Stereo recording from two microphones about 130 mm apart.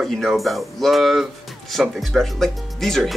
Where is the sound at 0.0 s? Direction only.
Centre (ahead or behind).